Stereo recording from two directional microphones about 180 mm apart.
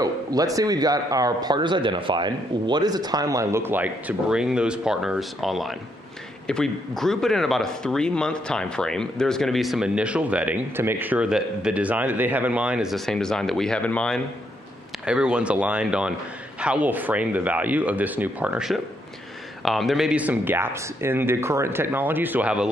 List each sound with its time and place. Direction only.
0.0 s a man's voice: 20° right (ahead or behind)